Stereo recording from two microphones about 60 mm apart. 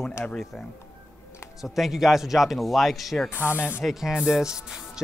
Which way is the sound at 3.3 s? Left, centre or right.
Left.